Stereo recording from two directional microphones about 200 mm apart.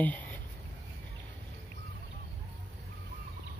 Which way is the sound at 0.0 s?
5° left (ahead or behind).